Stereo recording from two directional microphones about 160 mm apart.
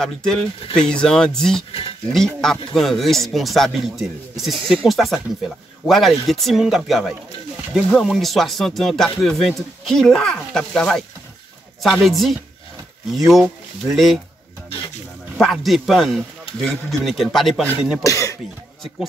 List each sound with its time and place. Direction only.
0.0 s speech: 5° left (ahead or behind)
1.7 s speech: 35° left (ahead or behind)
2.1 s speech: 5° left (ahead or behind)
15.3 s speech: centre (ahead or behind)
18.0 s speech: 20° left (ahead or behind)